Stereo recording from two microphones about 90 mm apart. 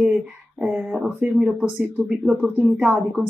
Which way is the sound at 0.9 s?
10° right (ahead or behind).